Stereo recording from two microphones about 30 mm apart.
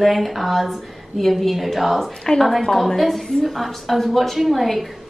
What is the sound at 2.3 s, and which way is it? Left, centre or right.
Speech, centre.